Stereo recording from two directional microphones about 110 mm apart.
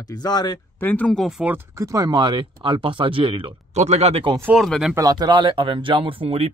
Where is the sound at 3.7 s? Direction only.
85° right.